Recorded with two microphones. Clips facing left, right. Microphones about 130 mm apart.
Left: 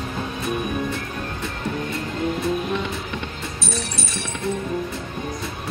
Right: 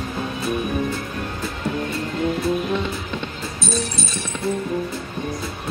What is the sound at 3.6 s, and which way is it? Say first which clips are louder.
Speech: right 5 dB; 65° left (ahead or behind).